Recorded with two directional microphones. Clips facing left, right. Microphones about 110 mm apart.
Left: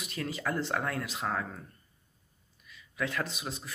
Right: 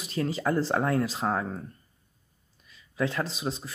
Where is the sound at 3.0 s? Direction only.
30° right (ahead or behind).